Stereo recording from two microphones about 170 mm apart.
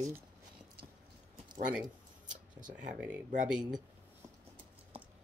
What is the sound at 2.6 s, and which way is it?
Speech, 45° right (ahead or behind).